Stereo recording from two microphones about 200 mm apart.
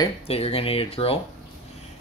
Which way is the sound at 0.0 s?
30° left (ahead or behind).